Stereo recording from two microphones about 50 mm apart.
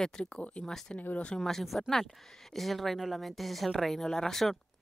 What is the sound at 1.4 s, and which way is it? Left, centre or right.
Speech, centre.